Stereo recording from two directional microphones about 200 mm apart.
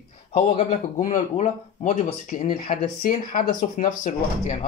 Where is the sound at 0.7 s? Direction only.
40° left (ahead or behind).